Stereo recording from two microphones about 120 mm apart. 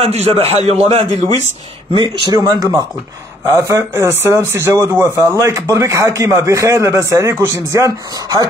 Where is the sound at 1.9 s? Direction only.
40° right (ahead or behind).